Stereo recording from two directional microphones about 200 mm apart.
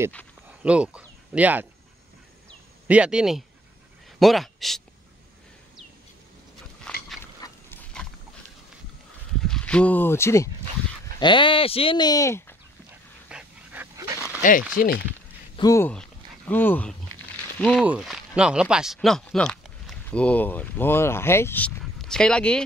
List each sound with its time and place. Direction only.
0.5 s speech: 5° right (ahead or behind)
2.9 s speech: 5° right (ahead or behind)
6.9 s dog: 5° left (ahead or behind)
7.4 s pig: 20° left (ahead or behind)
9.4 s speech: 5° left (ahead or behind)
13.3 s dog: 5° right (ahead or behind)
14.4 s speech: 40° left (ahead or behind)
15.5 s a sound: 15° left (ahead or behind)
17.8 s speech: 5° right (ahead or behind)